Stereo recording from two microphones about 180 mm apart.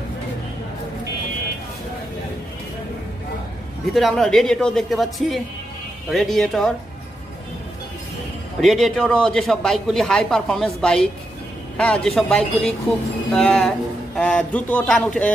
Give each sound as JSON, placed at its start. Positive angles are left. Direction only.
{"t": 3.9, "sound": "a man's voice", "side_deg": 0}
{"t": 8.5, "sound": "a man's voice", "side_deg": 0}